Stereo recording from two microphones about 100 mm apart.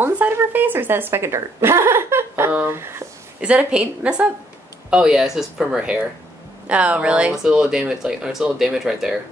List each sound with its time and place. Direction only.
0.0 s a sound: 20° right (ahead or behind)
2.5 s speech: 20° right (ahead or behind)
3.3 s speech: 10° right (ahead or behind)